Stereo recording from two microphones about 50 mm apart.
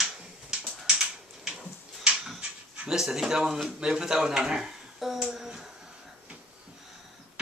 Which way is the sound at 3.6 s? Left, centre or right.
Centre.